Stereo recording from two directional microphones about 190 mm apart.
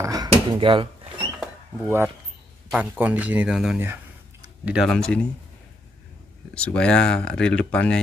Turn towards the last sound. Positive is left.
turn(degrees=5)  # may be behind; listen again after turning